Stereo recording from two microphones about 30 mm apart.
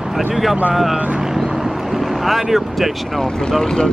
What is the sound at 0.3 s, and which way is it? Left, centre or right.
Speech, centre.